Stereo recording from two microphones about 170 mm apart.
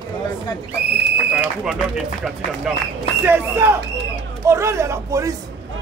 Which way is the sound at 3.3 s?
15° right (ahead or behind).